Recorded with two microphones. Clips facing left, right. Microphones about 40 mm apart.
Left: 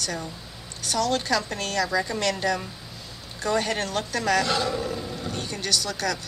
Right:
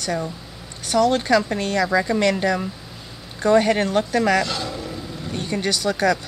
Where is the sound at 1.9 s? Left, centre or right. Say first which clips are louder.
Right 6 dB; right.